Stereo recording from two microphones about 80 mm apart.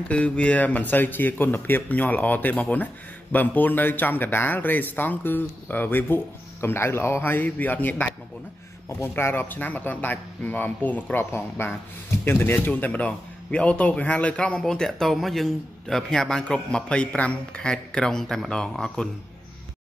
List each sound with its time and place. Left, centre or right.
0.1 s a man's voice: centre
14.6 s a man's voice: centre